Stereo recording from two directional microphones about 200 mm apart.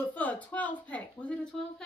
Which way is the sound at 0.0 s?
10° left (ahead or behind).